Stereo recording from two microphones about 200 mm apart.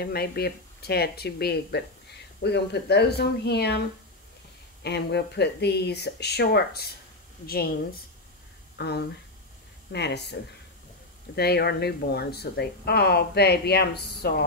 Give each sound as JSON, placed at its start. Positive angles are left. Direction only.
{"t": 0.0, "sound": "speech", "side_deg": 50}
{"t": 4.8, "sound": "speech", "side_deg": 55}
{"t": 8.7, "sound": "speech", "side_deg": 55}